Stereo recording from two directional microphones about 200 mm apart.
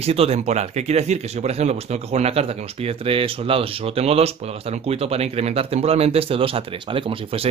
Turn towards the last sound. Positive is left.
turn(degrees=-30)  # may be behind; listen again after turning